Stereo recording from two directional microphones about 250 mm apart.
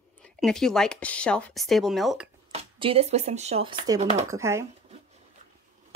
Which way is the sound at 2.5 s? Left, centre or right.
Right.